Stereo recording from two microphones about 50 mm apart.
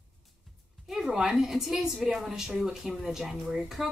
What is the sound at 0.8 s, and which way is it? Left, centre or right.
A woman's voice, centre.